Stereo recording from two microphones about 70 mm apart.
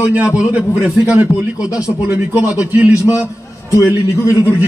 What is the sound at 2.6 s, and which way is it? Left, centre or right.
Speech, centre.